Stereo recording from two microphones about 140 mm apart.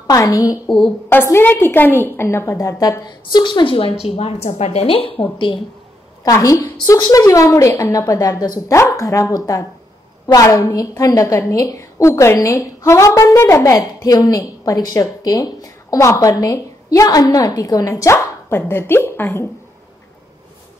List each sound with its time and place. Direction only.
0.0 s a woman's voice: 25° left (ahead or behind)
0.7 s a woman's voice: centre (ahead or behind)
1.0 s a woman's voice: 20° left (ahead or behind); by 5.6 s 35° left (ahead or behind)
6.2 s a woman's voice: 25° left (ahead or behind)